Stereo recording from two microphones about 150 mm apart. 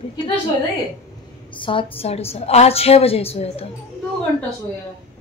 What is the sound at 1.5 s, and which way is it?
A woman's voice, 35° left (ahead or behind).